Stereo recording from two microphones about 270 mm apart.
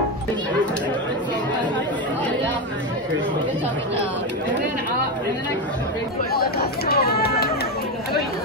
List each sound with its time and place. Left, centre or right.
6.3 s chatter: left